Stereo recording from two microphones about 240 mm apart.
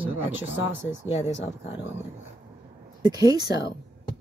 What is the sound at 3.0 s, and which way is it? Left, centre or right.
Speech, centre.